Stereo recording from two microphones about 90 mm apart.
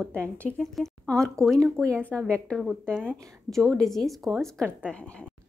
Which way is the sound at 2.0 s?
10° left (ahead or behind).